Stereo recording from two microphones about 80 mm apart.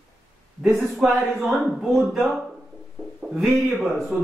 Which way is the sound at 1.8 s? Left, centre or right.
Centre.